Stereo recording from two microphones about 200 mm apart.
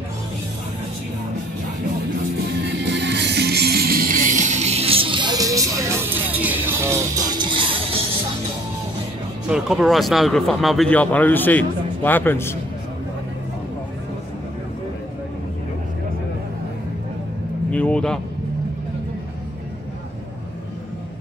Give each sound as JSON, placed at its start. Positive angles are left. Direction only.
{"t": 2.6, "sound": "music", "side_deg": -60}
{"t": 9.5, "sound": "speech", "side_deg": -5}
{"t": 17.6, "sound": "speech", "side_deg": 5}